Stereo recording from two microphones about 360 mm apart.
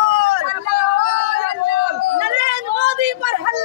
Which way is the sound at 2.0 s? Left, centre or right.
Right.